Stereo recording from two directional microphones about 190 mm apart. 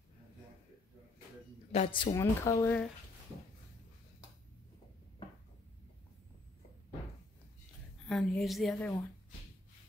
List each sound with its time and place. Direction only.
1.7 s speech: 30° left (ahead or behind)
2.1 s speech: 15° left (ahead or behind)
8.1 s a woman's voice: 5° left (ahead or behind)